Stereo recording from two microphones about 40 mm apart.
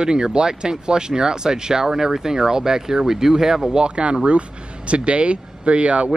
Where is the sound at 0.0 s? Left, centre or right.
Centre.